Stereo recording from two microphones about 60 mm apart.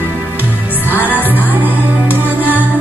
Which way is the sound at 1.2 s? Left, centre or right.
Right.